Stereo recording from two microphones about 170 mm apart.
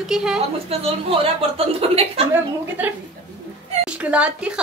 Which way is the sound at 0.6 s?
35° right (ahead or behind).